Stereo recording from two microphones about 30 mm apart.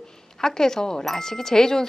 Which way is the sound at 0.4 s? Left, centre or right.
Centre.